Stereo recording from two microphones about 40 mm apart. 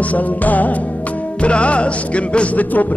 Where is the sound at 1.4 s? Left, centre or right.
Left.